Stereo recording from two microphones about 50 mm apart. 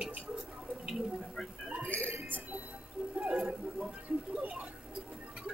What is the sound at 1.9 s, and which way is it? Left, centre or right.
Speech, left.